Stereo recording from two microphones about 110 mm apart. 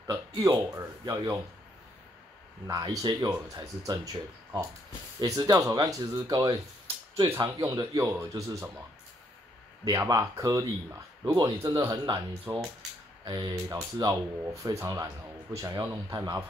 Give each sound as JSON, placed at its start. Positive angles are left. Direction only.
{"t": 0.4, "sound": "speech", "side_deg": -30}
{"t": 2.6, "sound": "speech", "side_deg": -35}
{"t": 7.2, "sound": "speech", "side_deg": -50}
{"t": 7.4, "sound": "a man's voice", "side_deg": -30}
{"t": 9.8, "sound": "speech", "side_deg": -35}
{"t": 12.5, "sound": "a man's voice", "side_deg": -25}
{"t": 13.2, "sound": "a man's voice", "side_deg": -45}